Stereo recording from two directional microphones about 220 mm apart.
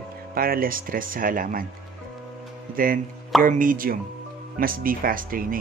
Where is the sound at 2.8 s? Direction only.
40° right (ahead or behind).